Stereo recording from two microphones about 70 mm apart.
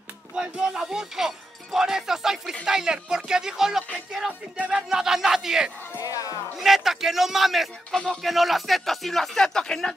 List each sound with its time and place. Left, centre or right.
0.3 s speech: centre
5.9 s music: left
6.6 s speech: centre